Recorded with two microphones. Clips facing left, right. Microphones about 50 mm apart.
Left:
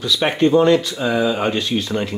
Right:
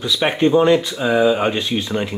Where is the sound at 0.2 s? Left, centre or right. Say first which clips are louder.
Even; centre.